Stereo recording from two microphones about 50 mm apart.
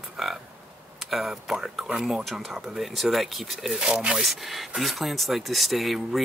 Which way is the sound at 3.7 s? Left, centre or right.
Centre.